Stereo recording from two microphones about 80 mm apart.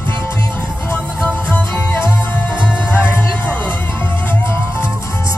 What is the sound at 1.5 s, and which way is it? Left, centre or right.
Music, right.